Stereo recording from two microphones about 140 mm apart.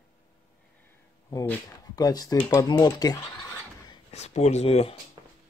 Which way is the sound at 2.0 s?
25° left (ahead or behind).